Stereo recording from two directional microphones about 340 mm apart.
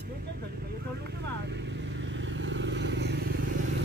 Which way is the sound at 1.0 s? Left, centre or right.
Right.